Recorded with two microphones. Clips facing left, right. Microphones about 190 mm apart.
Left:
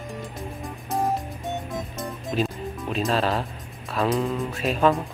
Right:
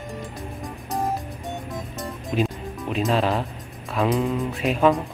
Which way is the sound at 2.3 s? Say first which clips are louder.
Right 2 dB; 10° right (ahead or behind).